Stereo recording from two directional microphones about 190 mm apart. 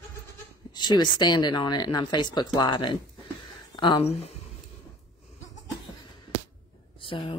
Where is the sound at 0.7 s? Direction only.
20° left (ahead or behind).